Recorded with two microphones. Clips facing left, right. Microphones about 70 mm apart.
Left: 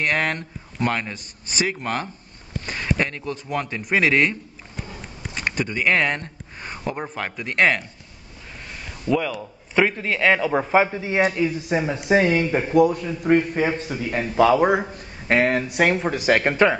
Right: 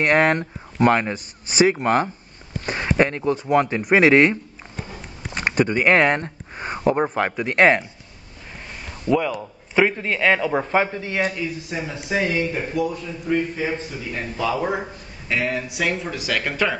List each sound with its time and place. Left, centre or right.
0.0 s speech: right
2.6 s a sound: right
3.9 s speech: right
9.0 s a man's voice: centre
11.7 s a man's voice: left
15.2 s speech: left
16.4 s speech: left